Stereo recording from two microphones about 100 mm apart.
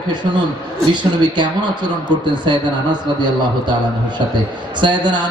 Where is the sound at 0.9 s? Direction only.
50° right (ahead or behind).